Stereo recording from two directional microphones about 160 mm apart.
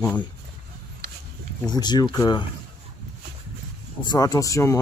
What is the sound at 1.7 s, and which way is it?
Speech, 25° left (ahead or behind).